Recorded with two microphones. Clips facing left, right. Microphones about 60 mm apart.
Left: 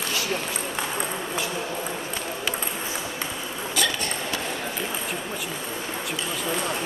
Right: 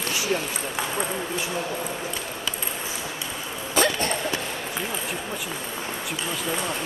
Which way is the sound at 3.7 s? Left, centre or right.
Right.